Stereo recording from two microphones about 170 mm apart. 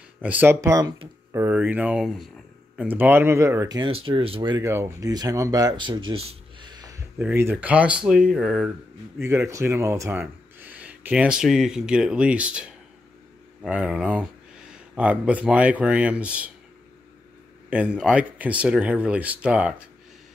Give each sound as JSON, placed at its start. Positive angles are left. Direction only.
{"t": 0.2, "sound": "speech", "side_deg": -10}
{"t": 2.9, "sound": "speech", "side_deg": -10}
{"t": 7.2, "sound": "speech", "side_deg": -10}
{"t": 9.2, "sound": "speech", "side_deg": -15}
{"t": 17.6, "sound": "speech", "side_deg": -10}